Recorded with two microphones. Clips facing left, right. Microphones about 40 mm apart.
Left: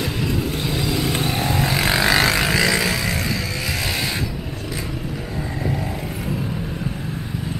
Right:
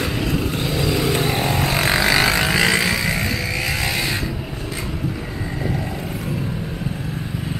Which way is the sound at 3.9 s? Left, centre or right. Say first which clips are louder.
Right 2 dB; centre.